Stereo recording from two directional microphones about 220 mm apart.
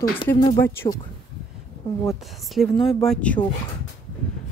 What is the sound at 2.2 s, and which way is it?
Speech, centre (ahead or behind).